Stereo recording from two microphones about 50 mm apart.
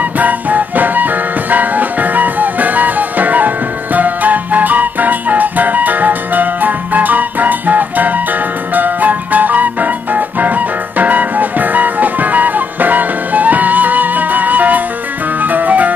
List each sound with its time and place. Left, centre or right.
0.2 s music: right